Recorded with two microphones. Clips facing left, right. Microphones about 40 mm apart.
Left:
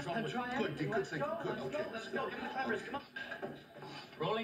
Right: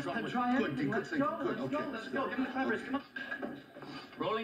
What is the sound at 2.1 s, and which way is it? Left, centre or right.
Music, right.